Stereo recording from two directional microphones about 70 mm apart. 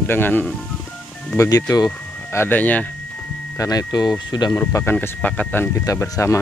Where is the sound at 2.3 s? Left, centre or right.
Left.